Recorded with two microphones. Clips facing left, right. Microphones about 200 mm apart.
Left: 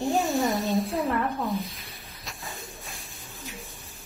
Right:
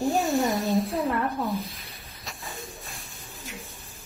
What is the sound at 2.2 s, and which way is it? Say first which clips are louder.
Pigeon: right 1 dB; centre (ahead or behind).